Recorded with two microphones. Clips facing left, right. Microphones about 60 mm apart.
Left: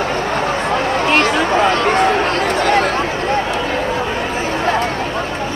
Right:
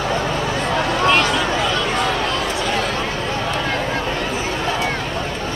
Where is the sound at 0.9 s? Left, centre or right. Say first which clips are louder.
Left 1 dB; left.